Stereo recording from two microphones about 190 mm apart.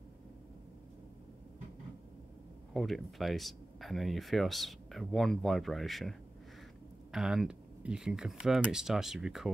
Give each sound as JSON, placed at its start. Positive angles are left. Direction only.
{"t": 2.7, "sound": "speech", "side_deg": 0}